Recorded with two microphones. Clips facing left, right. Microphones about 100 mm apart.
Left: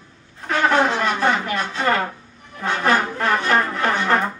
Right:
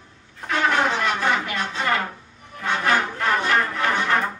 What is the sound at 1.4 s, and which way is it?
Music, 40° left (ahead or behind).